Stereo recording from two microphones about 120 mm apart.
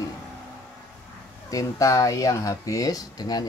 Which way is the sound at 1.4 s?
30° left (ahead or behind).